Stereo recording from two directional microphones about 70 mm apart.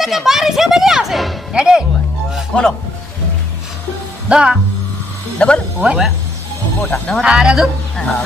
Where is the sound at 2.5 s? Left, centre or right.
Centre.